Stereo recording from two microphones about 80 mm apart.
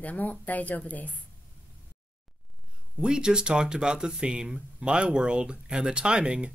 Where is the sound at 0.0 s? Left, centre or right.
Left.